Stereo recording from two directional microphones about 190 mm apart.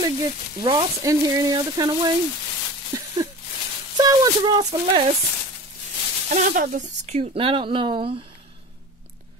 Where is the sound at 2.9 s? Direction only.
20° right (ahead or behind).